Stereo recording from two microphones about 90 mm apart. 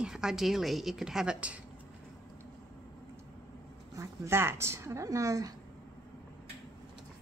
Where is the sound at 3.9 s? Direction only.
35° right (ahead or behind).